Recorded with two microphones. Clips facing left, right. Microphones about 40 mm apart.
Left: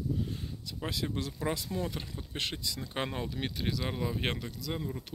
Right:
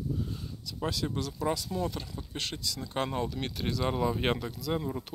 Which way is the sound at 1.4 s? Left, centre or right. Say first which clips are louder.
Right 3 dB; left.